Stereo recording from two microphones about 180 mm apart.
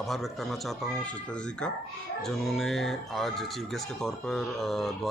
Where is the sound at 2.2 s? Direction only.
Centre (ahead or behind).